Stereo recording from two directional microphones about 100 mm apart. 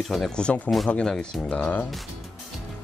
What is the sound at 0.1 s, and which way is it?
Speech, 5° left (ahead or behind).